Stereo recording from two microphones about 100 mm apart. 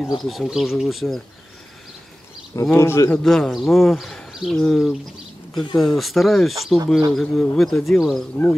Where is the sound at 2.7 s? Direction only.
25° left (ahead or behind).